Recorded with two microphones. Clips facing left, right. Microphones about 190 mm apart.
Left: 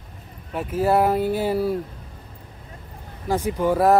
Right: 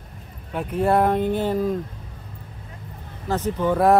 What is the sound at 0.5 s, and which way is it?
Speech, centre (ahead or behind).